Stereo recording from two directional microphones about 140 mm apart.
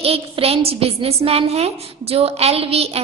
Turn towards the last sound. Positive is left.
turn(degrees=-45)  # may be behind; listen again after turning